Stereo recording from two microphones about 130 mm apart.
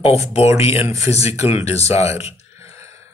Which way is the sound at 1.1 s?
55° left (ahead or behind).